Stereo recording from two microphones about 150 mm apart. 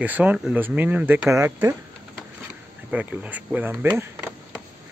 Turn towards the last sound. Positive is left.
turn(degrees=-15)  # may be behind; listen again after turning